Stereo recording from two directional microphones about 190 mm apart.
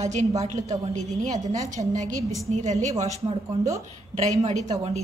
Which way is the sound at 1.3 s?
40° right (ahead or behind).